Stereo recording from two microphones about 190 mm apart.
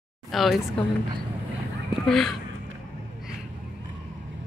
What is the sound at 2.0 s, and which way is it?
Speech, centre (ahead or behind).